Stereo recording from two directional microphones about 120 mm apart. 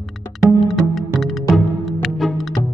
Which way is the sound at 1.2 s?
Centre (ahead or behind).